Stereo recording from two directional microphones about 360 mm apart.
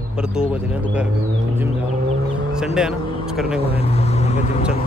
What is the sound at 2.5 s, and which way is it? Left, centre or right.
Speech, centre.